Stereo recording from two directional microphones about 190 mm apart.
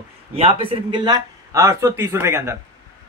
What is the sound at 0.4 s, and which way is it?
A man's voice, 30° right (ahead or behind).